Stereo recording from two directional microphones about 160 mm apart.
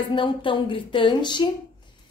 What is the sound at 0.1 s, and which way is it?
A woman's voice, 30° left (ahead or behind).